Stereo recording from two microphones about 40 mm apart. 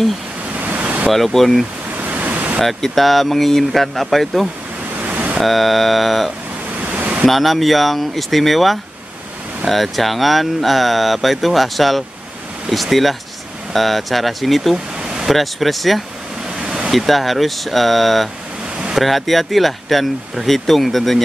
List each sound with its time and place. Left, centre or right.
0.6 s a sound: right
1.1 s speech: centre
2.0 s waves: right
2.6 s speech: centre
5.0 s a sound: right
5.4 s speech: centre
6.9 s vehicle: right
7.2 s speech: centre
15.0 s vehicle: centre
15.2 s speech: centre
16.5 s a sound: centre
16.9 s speech: centre